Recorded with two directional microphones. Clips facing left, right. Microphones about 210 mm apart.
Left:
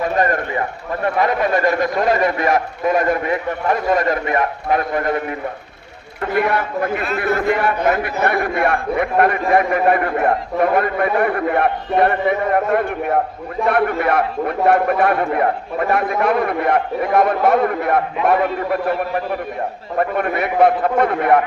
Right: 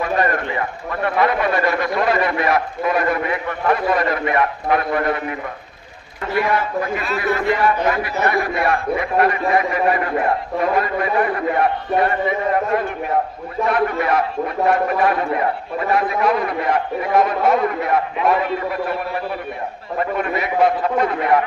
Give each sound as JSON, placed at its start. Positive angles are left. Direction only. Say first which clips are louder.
{"t": 0.0, "sound": "a man's voice", "louder": "left 1 dB", "side_deg": 40}
{"t": 6.3, "sound": "a man's voice", "louder": "left 1 dB", "side_deg": 55}
{"t": 20.0, "sound": "a man's voice", "louder": "left 3 dB", "side_deg": 55}